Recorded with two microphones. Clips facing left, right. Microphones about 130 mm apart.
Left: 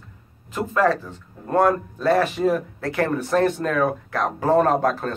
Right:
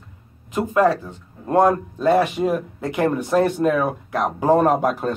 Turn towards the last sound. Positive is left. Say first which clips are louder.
# right 2 dB
turn(degrees=-10)  # may be behind; listen again after turning